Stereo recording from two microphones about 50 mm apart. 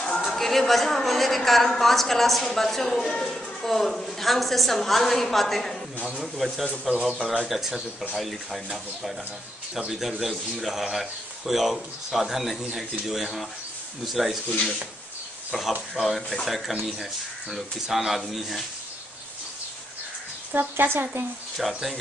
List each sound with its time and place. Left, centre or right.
0.2 s a woman's voice: centre
7.0 s a woman's voice: centre
9.8 s a woman's voice: centre
15.5 s speech: centre
15.9 s a woman's voice: centre
20.5 s speech: right
21.6 s a woman's voice: centre